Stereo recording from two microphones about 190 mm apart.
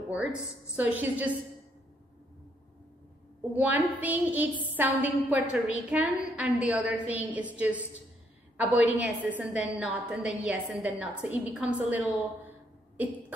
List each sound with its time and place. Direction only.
0.1 s a woman's voice: 10° right (ahead or behind)
3.5 s a woman's voice: 10° right (ahead or behind)